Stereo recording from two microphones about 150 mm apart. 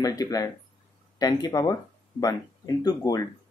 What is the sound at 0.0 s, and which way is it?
Speech, 25° left (ahead or behind).